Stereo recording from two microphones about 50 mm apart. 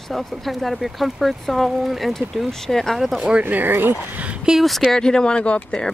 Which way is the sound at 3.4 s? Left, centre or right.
Right.